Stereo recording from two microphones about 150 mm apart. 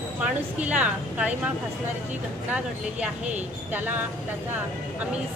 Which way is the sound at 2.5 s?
5° right (ahead or behind).